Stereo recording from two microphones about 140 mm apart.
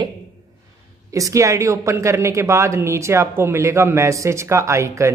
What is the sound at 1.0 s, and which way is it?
Speech, 25° right (ahead or behind).